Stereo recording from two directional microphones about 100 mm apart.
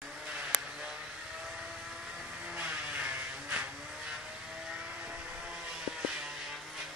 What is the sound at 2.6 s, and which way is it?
Vehicle, 10° right (ahead or behind).